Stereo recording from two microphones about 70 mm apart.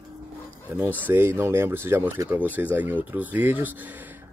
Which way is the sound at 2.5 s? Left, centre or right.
Right.